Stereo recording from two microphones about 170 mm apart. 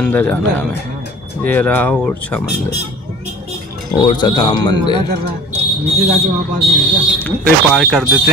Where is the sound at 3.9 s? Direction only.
25° left (ahead or behind).